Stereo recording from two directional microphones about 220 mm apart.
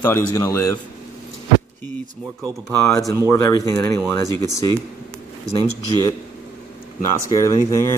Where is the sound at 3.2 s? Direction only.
15° left (ahead or behind).